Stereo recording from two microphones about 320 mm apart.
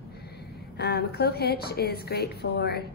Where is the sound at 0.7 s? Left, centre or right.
Left.